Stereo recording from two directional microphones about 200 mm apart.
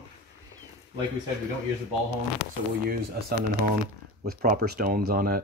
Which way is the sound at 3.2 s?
50° right (ahead or behind).